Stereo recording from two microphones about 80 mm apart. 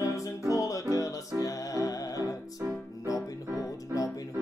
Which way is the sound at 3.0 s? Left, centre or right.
Left.